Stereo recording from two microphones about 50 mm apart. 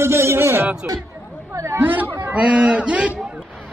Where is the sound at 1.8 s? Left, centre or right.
Right.